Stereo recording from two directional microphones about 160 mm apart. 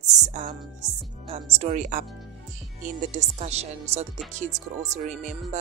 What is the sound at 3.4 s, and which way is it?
Speech, 40° right (ahead or behind).